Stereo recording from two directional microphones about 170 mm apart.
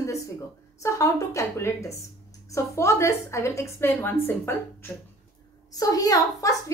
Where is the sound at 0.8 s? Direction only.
15° left (ahead or behind).